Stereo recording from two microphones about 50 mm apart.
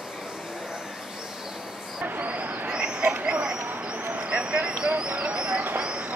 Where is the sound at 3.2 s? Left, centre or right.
Centre.